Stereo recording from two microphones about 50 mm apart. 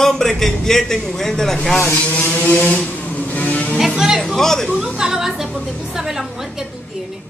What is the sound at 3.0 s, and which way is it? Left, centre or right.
Music, left.